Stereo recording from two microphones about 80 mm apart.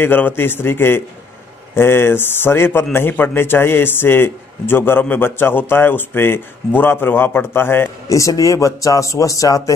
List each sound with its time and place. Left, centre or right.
0.0 s speech: left
8.1 s a man's voice: left